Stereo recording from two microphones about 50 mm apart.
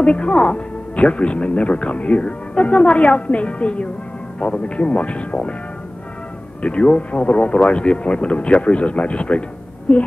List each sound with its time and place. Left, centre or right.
0.0 s speech: left
6.6 s speech: left